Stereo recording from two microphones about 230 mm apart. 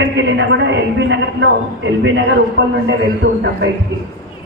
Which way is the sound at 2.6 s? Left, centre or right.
Right.